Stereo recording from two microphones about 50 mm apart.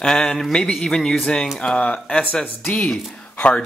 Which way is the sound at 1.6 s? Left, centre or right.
Left.